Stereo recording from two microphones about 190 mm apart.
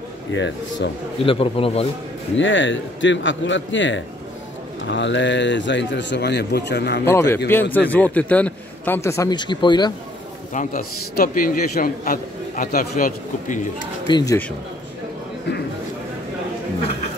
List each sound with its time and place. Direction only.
0.3 s speech: 75° left (ahead or behind)
1.2 s speech: 30° left (ahead or behind)
2.3 s speech: 80° left; by 7.0 s 60° left (ahead or behind)
7.1 s a man's voice: 15° left (ahead or behind)
10.5 s a man's voice: 45° left (ahead or behind)
14.0 s speech: 20° left (ahead or behind)